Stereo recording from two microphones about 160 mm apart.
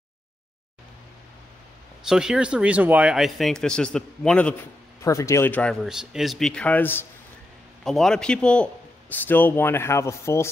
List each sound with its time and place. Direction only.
2.0 s speech: 5° right (ahead or behind)
5.0 s speech: 20° left (ahead or behind)
5.9 s speech: centre (ahead or behind)
7.8 s speech: centre (ahead or behind)